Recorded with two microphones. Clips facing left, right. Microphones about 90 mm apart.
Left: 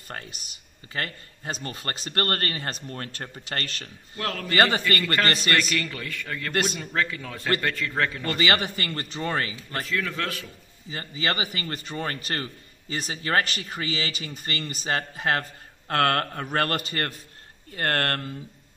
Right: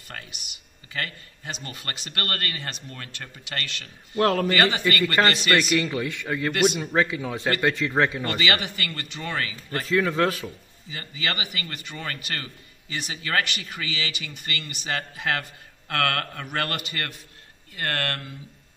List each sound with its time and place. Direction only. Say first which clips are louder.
0.1 s speech: left 2 dB; 40° left (ahead or behind)
4.2 s a man's voice: right 9 dB; 40° right (ahead or behind)
4.6 s speech: even; 40° left (ahead or behind)
5.8 s a man's voice: right 6 dB; 20° right (ahead or behind)
6.5 s speech: right 4 dB; 35° left (ahead or behind)
6.9 s a man's voice: right 4 dB; 15° right (ahead or behind)
8.4 s speech: left 2 dB; 35° left (ahead or behind)
9.8 s a man's voice: right 8 dB; 30° right (ahead or behind)
10.9 s speech: left 2 dB; 35° left (ahead or behind)